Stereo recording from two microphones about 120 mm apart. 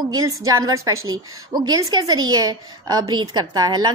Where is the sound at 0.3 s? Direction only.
30° right (ahead or behind).